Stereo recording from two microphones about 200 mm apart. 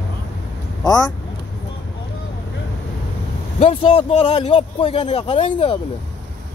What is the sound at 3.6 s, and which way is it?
A man's voice, 25° left (ahead or behind).